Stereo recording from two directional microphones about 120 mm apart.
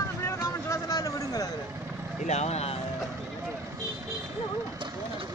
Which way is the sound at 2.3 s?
65° left (ahead or behind).